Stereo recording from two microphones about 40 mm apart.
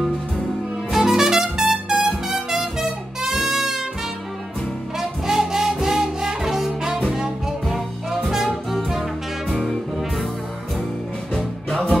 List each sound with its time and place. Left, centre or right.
0.9 s music: centre
4.9 s music: centre
8.3 s music: centre
11.3 s music: left